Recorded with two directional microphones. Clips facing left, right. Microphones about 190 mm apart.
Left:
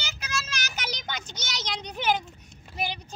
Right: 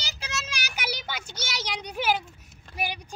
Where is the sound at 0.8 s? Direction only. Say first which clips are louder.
Right 3 dB; 10° right (ahead or behind).